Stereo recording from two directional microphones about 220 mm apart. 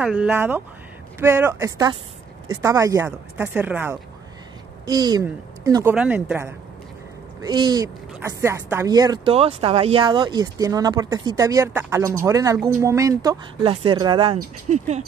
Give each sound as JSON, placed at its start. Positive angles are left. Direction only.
{"t": 0.0, "sound": "speech", "side_deg": -5}